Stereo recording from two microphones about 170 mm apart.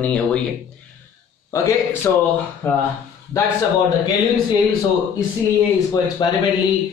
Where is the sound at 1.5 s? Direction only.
15° left (ahead or behind).